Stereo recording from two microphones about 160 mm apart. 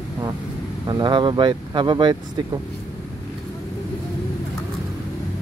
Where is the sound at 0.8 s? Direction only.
25° right (ahead or behind).